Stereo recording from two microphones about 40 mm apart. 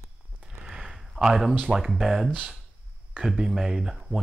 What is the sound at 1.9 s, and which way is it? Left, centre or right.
Speech, centre.